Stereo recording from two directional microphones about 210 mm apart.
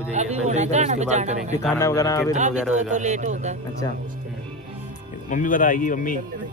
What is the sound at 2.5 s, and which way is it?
Speech, 5° right (ahead or behind).